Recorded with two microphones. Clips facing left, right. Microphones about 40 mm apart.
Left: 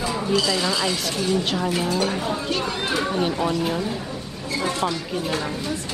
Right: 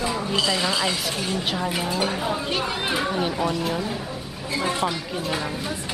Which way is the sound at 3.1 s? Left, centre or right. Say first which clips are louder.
Left 2 dB; centre.